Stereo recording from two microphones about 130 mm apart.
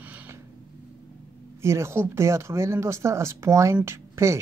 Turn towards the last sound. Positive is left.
turn(degrees=-20)  # may be behind; listen again after turning